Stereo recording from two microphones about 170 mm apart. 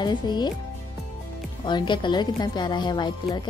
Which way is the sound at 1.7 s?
25° left (ahead or behind).